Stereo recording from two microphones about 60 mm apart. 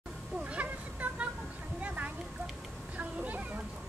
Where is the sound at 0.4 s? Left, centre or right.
Right.